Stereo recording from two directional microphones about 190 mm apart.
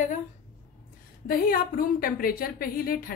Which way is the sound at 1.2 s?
50° left (ahead or behind).